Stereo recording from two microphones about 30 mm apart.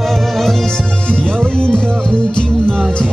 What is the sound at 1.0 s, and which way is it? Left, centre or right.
Music, left.